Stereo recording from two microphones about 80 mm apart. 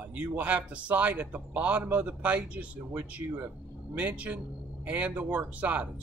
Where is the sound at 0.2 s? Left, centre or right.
Centre.